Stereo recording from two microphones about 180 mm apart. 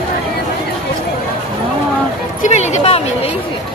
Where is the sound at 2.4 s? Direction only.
35° left (ahead or behind).